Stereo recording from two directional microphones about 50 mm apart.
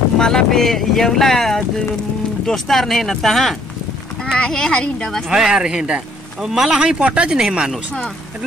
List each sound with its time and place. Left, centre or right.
0.2 s speech: centre
5.3 s a man's voice: centre
7.0 s a man's voice: right